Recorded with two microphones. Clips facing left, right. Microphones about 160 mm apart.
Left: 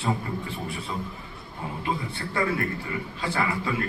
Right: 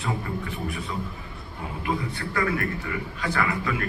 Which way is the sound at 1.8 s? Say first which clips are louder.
Right 2 dB; 30° left (ahead or behind).